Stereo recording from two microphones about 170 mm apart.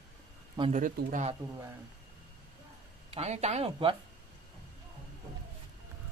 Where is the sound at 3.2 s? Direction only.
40° right (ahead or behind).